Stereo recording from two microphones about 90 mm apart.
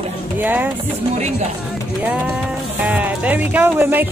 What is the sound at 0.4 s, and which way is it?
Speech, 20° right (ahead or behind).